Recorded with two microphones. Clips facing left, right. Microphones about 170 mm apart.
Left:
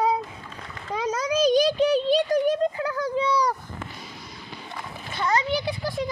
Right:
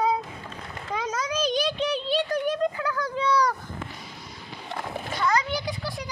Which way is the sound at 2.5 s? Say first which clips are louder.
Left 2 dB; 25° left (ahead or behind).